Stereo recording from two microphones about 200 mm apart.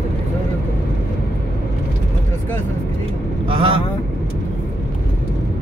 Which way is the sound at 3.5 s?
25° right (ahead or behind).